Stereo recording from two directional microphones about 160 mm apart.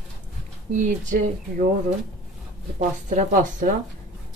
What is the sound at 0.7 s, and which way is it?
Speech, 55° right (ahead or behind).